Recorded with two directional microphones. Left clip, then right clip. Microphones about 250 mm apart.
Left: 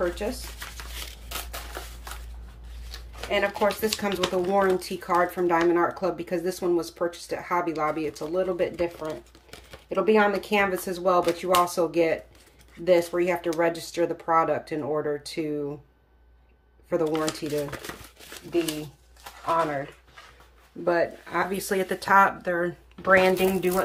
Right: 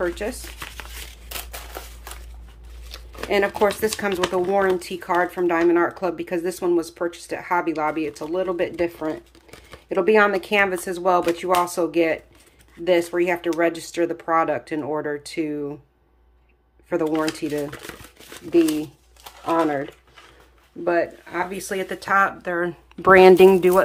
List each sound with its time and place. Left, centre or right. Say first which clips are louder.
0.1 s speech: right 3 dB; centre
3.2 s speech: right 5 dB; right; by 15.6 s centre
16.9 s speech: right 3 dB; centre
19.4 s speech: right 4 dB; right
20.8 s speech: right 3 dB; centre
23.0 s speech: right 9 dB; right